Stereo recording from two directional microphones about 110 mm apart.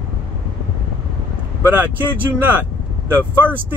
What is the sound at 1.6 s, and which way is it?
Speech, 20° right (ahead or behind).